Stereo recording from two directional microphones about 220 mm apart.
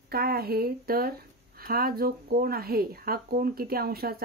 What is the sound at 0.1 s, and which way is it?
Speech, 45° right (ahead or behind).